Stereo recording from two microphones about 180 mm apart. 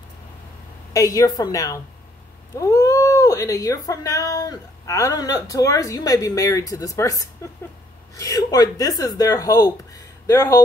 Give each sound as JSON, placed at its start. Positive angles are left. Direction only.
{"t": 0.9, "sound": "speech", "side_deg": 20}